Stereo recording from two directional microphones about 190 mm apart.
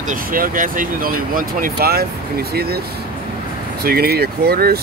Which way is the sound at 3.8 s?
55° right (ahead or behind).